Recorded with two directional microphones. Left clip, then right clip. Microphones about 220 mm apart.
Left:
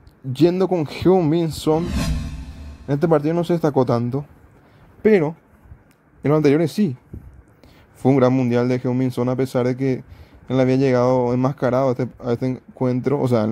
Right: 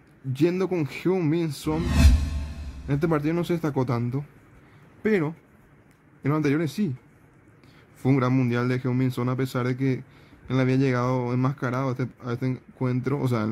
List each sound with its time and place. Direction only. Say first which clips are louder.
0.3 s speech: left 7 dB; 20° left (ahead or behind)
1.9 s music: even; centre (ahead or behind)
2.9 s speech: left 7 dB; 15° left (ahead or behind)
8.0 s speech: left 8 dB; 15° left (ahead or behind)